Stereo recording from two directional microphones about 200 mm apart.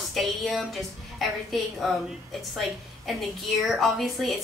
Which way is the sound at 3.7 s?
Centre (ahead or behind).